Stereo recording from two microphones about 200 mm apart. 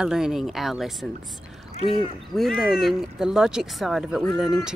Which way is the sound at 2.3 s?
Centre (ahead or behind).